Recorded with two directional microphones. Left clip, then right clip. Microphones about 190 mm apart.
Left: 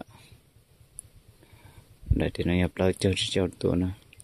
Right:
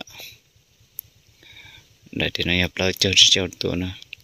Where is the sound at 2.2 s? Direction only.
5° left (ahead or behind).